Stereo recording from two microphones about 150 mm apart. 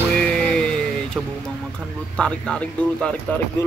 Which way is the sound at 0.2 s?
5° left (ahead or behind).